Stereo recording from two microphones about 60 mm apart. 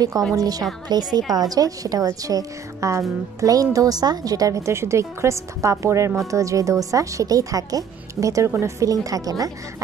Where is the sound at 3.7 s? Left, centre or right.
Right.